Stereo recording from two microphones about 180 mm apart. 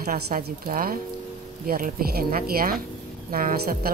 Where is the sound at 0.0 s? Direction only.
55° right (ahead or behind).